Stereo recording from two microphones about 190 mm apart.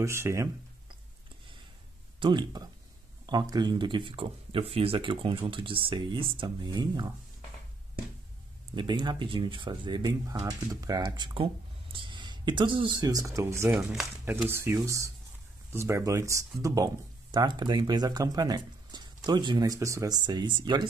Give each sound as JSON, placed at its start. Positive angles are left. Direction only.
{"t": 0.0, "sound": "speech", "side_deg": -15}
{"t": 2.1, "sound": "speech", "side_deg": -25}
{"t": 8.7, "sound": "speech", "side_deg": -25}